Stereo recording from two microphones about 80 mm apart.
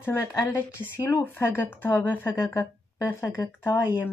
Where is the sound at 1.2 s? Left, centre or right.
Left.